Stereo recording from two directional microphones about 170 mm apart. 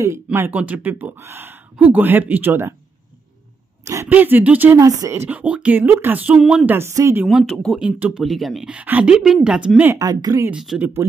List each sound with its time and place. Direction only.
0.0 s speech: 15° right (ahead or behind)
3.8 s speech: 15° right (ahead or behind)
7.2 s speech: centre (ahead or behind)
9.9 s speech: 20° right (ahead or behind)
10.5 s speech: 5° right (ahead or behind)